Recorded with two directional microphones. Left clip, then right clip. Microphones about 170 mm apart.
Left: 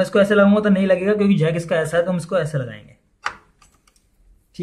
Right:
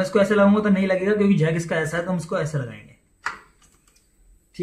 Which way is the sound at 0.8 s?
5° left (ahead or behind).